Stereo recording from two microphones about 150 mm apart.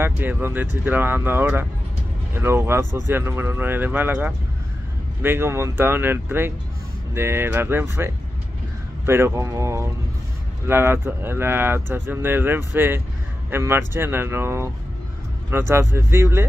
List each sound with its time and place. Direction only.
0.0 s speech: 15° right (ahead or behind)